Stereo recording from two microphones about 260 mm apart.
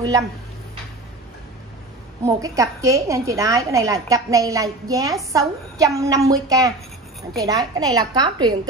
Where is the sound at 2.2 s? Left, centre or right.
Centre.